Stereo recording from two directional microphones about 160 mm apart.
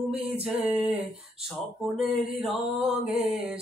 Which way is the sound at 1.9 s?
5° right (ahead or behind).